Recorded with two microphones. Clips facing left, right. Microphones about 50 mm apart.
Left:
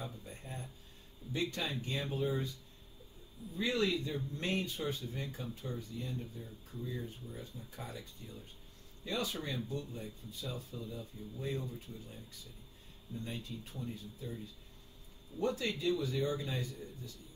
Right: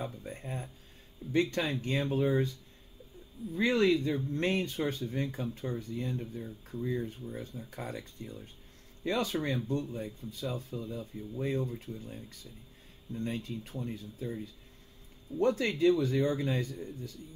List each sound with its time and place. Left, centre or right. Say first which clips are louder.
0.4 s a sound: right 6 dB; right
1.3 s speech: right 7 dB; right
3.5 s speech: right 7 dB; right